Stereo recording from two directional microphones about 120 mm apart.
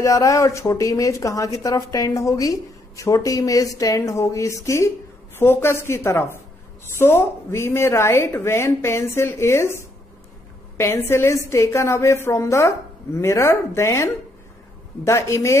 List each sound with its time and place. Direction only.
0.0 s speech: 25° left (ahead or behind)